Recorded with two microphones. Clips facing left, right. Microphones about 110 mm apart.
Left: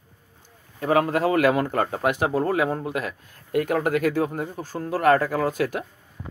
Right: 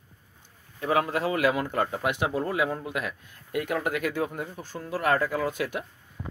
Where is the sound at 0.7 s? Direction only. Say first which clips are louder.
Left 4 dB; 45° left (ahead or behind).